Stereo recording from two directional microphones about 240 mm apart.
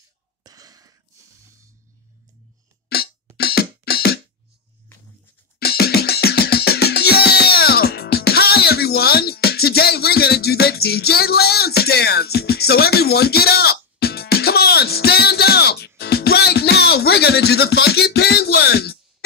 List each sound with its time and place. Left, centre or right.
0.4 s a sound: centre
2.9 s music: left
5.6 s music: left